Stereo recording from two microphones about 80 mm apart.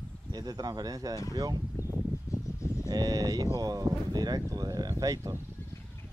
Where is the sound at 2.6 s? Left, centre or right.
Left.